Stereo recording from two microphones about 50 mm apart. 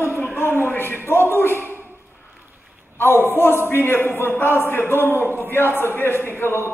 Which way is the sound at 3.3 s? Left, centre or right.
Left.